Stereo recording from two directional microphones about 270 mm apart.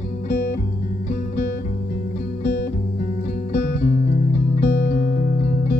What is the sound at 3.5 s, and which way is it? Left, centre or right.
Music, left.